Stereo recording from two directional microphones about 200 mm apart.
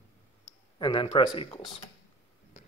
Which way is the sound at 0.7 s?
25° left (ahead or behind).